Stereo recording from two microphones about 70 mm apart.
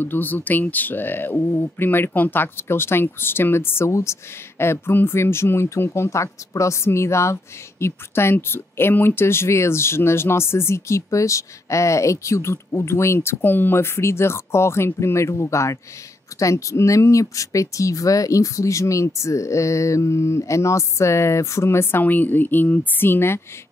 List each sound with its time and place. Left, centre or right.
0.0 s speech: left